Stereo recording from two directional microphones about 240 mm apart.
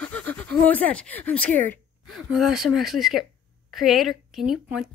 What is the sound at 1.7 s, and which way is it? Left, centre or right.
Speech, centre.